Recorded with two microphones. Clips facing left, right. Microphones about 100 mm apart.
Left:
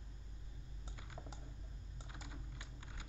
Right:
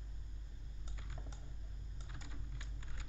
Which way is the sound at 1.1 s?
10° left (ahead or behind).